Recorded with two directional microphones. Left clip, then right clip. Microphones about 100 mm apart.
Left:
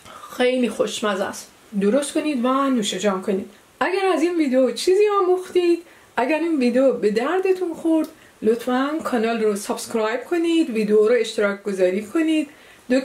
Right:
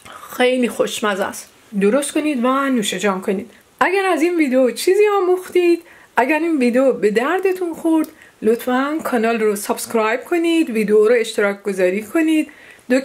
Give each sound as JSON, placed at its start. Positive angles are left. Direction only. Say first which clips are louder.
{"t": 0.3, "sound": "speech", "louder": "right 3 dB", "side_deg": -40}